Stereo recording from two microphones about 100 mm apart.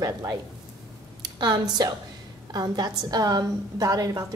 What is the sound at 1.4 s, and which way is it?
A woman's voice, 45° right (ahead or behind).